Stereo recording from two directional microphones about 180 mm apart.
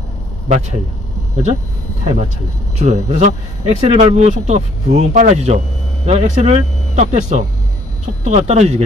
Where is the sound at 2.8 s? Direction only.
40° right (ahead or behind).